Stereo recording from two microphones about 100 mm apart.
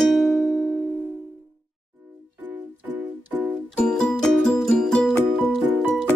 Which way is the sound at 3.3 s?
25° right (ahead or behind).